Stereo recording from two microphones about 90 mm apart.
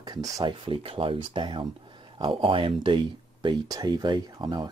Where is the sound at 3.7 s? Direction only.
50° right (ahead or behind).